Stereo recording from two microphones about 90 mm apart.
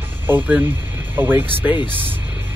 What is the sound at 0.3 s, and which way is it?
Speech, 20° right (ahead or behind).